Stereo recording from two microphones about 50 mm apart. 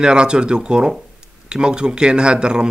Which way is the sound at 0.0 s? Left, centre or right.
Centre.